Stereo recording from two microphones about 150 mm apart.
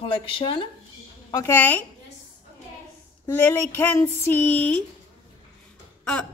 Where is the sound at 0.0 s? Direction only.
35° left (ahead or behind).